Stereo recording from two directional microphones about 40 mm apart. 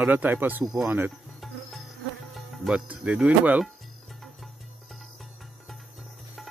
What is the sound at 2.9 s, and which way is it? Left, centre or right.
Speech, right.